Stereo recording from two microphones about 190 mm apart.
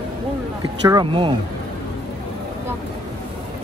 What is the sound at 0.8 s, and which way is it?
Speech, 25° right (ahead or behind).